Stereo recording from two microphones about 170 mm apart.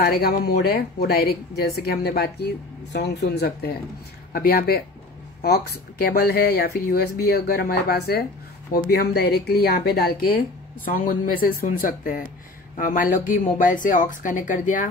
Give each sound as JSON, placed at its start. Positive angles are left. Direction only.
{"t": 0.0, "sound": "speech", "side_deg": 65}
{"t": 10.9, "sound": "speech", "side_deg": 55}